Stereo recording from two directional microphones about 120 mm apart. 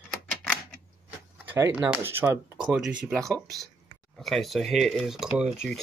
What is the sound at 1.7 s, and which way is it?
Speech, 10° right (ahead or behind).